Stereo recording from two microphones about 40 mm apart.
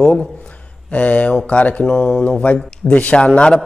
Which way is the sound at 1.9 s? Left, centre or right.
Left.